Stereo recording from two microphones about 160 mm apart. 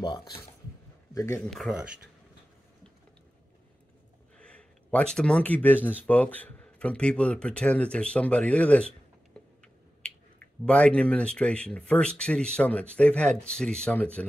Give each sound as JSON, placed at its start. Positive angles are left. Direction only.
{"t": 1.1, "sound": "speech", "side_deg": 20}
{"t": 1.4, "sound": "speech", "side_deg": 0}
{"t": 4.4, "sound": "a sound", "side_deg": 5}
{"t": 5.9, "sound": "speech", "side_deg": 10}
{"t": 10.6, "sound": "speech", "side_deg": 5}